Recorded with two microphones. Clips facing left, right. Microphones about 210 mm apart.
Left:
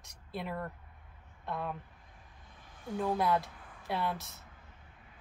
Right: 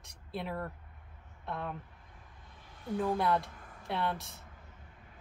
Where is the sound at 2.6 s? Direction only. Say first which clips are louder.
Even; 50° left (ahead or behind).